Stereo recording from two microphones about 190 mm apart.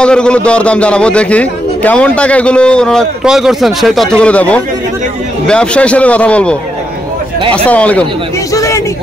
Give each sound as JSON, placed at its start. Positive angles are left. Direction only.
{"t": 0.0, "sound": "a man's voice", "side_deg": 5}
{"t": 7.5, "sound": "a man's voice", "side_deg": 5}
{"t": 8.5, "sound": "a sound", "side_deg": 15}